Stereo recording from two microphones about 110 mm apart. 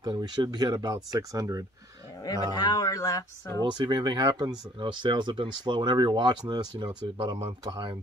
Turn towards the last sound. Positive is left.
turn(degrees=-45)  # may be behind; listen again after turning